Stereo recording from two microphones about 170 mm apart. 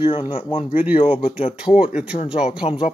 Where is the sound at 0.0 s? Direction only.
30° left (ahead or behind).